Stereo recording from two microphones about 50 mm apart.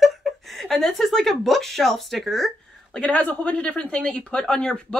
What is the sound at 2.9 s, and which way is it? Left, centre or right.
Speech, left.